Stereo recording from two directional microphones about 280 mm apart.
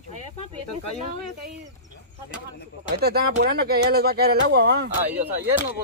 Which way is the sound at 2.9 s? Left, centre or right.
Right.